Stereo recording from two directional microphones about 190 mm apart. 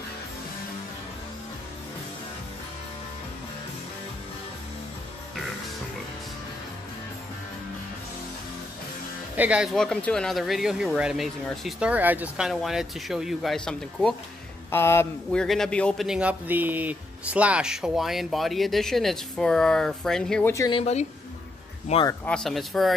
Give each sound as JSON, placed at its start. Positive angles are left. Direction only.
{"t": 9.4, "sound": "speech", "side_deg": -5}
{"t": 14.7, "sound": "speech", "side_deg": 15}
{"t": 15.4, "sound": "speech", "side_deg": 0}
{"t": 20.5, "sound": "speech", "side_deg": 20}
{"t": 20.8, "sound": "a woman's voice", "side_deg": 35}
{"t": 22.2, "sound": "speech", "side_deg": 5}